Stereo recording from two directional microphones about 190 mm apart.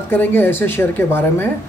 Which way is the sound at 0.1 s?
10° left (ahead or behind).